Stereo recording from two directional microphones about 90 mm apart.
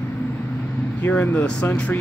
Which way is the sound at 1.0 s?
20° left (ahead or behind).